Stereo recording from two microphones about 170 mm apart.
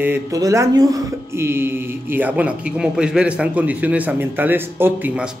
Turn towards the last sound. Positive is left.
turn(degrees=-10)  # may be behind; listen again after turning